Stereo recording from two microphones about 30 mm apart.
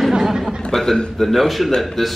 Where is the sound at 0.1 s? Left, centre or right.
Centre.